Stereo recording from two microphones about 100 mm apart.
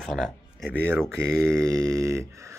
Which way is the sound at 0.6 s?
20° right (ahead or behind).